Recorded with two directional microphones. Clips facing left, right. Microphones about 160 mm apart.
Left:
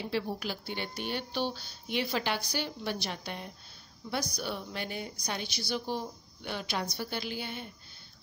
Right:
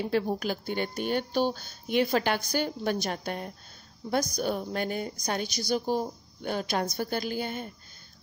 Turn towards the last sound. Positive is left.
turn(degrees=-45)  # may be behind; listen again after turning